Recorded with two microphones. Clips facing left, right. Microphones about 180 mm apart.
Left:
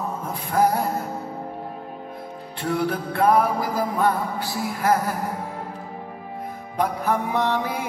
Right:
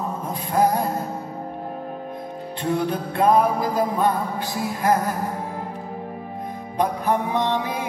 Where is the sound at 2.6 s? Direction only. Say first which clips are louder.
Right 1 dB; 20° right (ahead or behind).